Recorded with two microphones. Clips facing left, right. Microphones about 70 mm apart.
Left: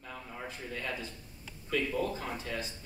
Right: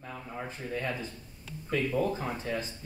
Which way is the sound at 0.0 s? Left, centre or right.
Centre.